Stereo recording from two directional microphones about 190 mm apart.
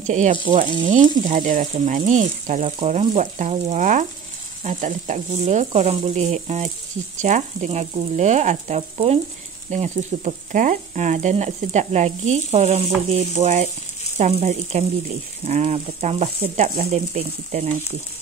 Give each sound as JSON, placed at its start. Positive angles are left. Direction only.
{"t": 0.0, "sound": "speech", "side_deg": -40}